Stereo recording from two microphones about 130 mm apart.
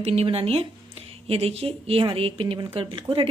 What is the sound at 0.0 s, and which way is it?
A woman's voice, 50° right (ahead or behind).